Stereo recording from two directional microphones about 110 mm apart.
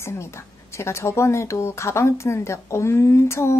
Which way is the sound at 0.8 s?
25° left (ahead or behind).